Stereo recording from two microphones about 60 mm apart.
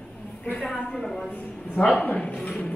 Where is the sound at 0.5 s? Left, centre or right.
Centre.